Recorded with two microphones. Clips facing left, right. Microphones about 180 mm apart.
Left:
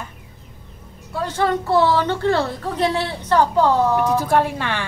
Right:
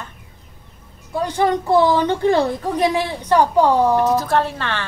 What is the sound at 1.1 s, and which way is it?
A woman's voice, 15° right (ahead or behind).